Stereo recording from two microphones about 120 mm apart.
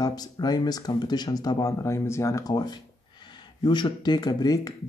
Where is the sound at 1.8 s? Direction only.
25° left (ahead or behind).